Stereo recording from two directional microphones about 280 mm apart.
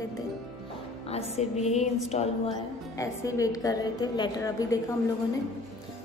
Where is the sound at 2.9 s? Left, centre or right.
Centre.